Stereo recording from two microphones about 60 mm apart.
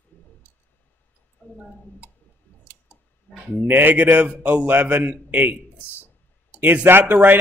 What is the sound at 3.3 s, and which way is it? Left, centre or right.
Speech, left.